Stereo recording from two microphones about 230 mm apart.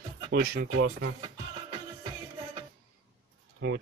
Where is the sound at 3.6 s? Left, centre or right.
Right.